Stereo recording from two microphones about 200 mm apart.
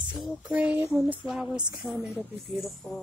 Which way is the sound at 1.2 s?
5° right (ahead or behind).